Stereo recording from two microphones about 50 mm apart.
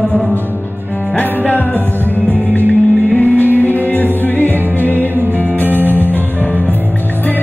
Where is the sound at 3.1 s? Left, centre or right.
Left.